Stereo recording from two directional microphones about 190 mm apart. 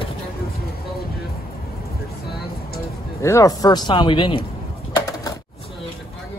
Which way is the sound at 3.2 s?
15° left (ahead or behind).